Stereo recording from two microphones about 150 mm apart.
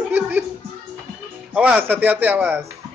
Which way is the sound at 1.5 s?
10° right (ahead or behind).